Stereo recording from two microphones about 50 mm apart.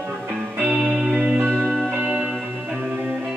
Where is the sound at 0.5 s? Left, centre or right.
Right.